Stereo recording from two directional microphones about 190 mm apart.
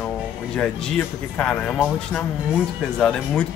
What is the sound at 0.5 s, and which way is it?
Speech, 5° left (ahead or behind).